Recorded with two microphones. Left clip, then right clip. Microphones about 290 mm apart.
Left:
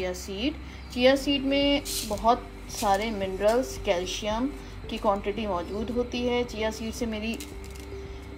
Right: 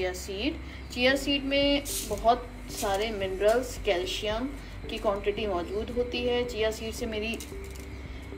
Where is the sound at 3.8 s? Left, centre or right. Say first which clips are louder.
Left 1 dB; left.